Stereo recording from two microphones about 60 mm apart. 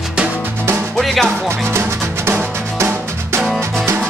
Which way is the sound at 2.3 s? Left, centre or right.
Right.